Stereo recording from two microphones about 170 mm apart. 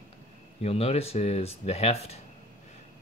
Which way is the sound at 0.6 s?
35° left (ahead or behind).